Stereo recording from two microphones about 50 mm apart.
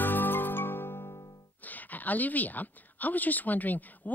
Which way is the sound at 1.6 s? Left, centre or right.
Left.